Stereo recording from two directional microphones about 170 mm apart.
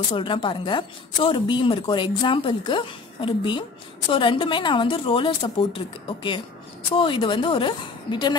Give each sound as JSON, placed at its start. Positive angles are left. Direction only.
{"t": 0.1, "sound": "a woman's voice", "side_deg": 30}